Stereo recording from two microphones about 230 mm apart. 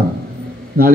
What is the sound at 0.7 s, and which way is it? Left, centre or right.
Speech, right.